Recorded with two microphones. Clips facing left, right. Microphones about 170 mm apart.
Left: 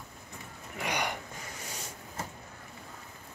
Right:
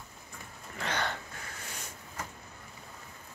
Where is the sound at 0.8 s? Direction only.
15° left (ahead or behind).